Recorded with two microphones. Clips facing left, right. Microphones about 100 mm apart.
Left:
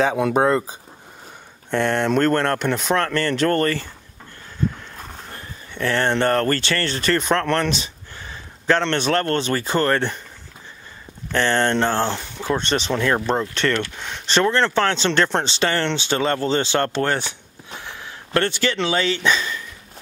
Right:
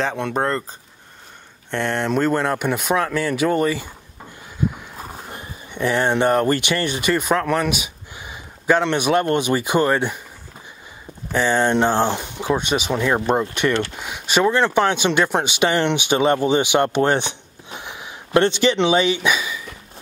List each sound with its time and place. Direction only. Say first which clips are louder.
0.0 s speech: left 4 dB; 5° left (ahead or behind); by 10.2 s 10° right (ahead or behind)
11.3 s speech: right 1 dB; 10° right (ahead or behind)